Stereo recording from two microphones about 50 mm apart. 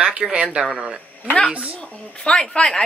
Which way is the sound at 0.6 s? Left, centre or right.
Centre.